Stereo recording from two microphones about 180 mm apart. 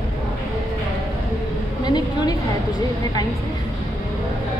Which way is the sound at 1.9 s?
20° left (ahead or behind).